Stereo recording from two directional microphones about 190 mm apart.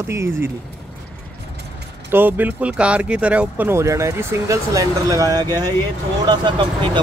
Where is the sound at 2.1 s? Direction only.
10° right (ahead or behind).